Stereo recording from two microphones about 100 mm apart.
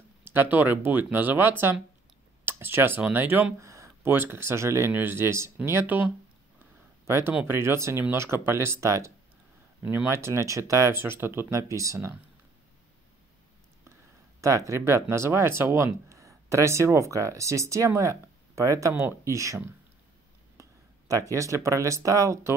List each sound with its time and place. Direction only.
0.2 s speech: 20° right (ahead or behind)
3.5 s speech: 30° right (ahead or behind)
14.4 s speech: 30° right (ahead or behind)
21.1 s speech: 35° right (ahead or behind)